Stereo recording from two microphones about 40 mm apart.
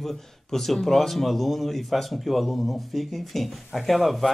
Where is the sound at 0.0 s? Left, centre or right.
Centre.